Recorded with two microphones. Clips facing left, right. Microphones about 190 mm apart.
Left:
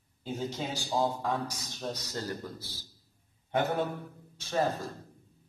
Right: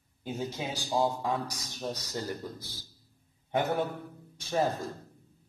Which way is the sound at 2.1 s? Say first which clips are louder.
Right 1 dB; 15° right (ahead or behind).